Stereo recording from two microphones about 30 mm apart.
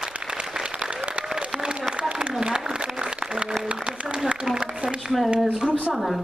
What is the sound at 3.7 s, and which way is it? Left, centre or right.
Applause, right.